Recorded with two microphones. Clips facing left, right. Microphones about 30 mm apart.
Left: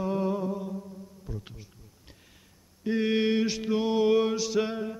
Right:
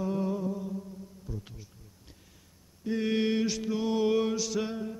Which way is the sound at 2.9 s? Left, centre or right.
Centre.